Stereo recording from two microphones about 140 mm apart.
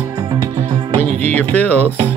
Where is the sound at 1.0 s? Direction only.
55° right (ahead or behind).